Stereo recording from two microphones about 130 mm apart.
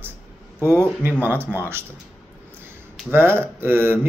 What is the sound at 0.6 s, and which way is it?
Speech, 15° left (ahead or behind).